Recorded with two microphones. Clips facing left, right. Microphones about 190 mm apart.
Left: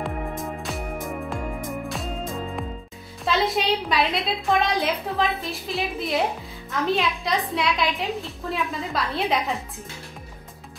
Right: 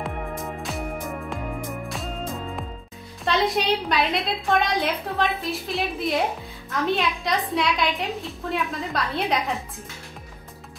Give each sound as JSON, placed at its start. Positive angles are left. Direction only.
{"t": 0.0, "sound": "music", "side_deg": 0}
{"t": 3.3, "sound": "a woman's voice", "side_deg": 0}